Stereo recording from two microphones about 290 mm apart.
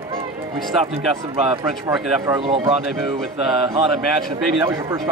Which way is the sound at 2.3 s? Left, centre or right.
Centre.